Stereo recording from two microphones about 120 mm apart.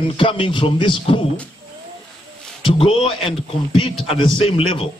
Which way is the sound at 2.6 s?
50° left (ahead or behind).